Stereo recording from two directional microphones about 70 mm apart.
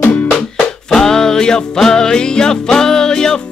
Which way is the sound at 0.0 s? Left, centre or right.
Centre.